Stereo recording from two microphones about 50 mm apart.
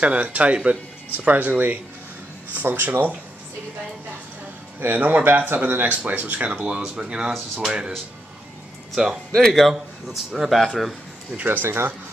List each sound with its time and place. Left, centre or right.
0.0 s speech: right
2.5 s speech: right
4.7 s speech: right; by 7.3 s centre
7.3 s a man's voice: centre
8.9 s speech: centre
9.3 s a man's voice: centre
11.3 s speech: right